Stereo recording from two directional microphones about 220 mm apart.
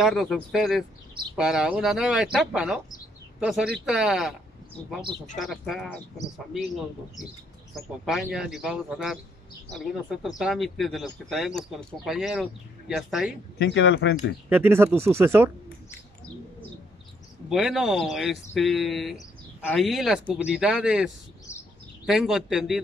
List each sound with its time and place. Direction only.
0.0 s speech: centre (ahead or behind)
5.4 s speech: centre (ahead or behind)
8.0 s speech: centre (ahead or behind)
13.6 s speech: 55° left (ahead or behind)
14.5 s speech: 10° right (ahead or behind)
17.5 s speech: 5° right (ahead or behind)